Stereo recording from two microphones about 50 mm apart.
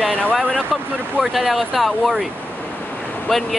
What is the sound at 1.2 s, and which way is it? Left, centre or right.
Speech, centre.